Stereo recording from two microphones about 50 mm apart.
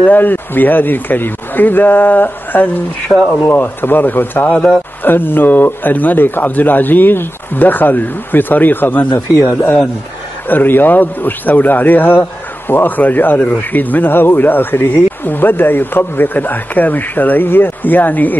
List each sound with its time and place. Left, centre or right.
0.0 s speech: left
10.5 s speech: left